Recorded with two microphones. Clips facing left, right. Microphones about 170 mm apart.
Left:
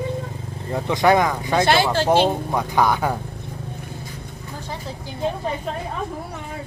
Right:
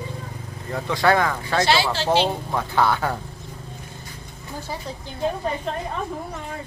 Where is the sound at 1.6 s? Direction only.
50° left (ahead or behind).